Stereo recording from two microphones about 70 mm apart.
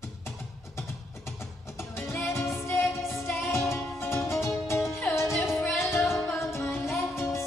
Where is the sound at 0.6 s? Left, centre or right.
Left.